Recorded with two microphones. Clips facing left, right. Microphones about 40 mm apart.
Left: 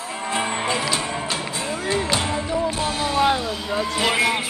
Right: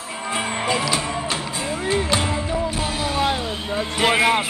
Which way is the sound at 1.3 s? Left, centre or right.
Right.